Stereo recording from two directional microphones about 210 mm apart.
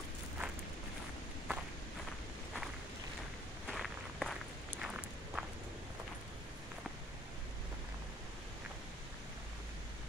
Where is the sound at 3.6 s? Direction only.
Centre (ahead or behind).